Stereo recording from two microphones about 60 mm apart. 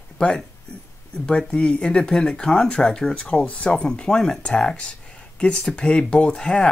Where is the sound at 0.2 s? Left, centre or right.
Centre.